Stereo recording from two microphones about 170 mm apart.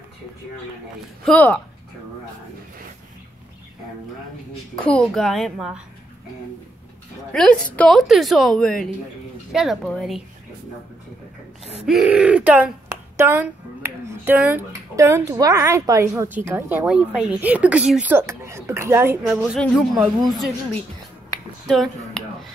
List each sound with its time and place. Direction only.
1.2 s speech: 5° left (ahead or behind)
4.7 s a woman's voice: 5° left (ahead or behind)
7.3 s a woman's voice: 5° left (ahead or behind)
11.8 s a woman's voice: 5° right (ahead or behind)
19.5 s a woman's voice: centre (ahead or behind)
21.6 s speech: centre (ahead or behind)